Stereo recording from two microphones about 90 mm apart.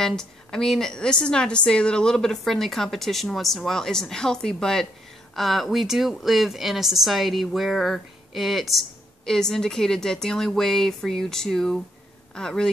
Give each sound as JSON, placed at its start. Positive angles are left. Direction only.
{"t": 0.0, "sound": "speech", "side_deg": 5}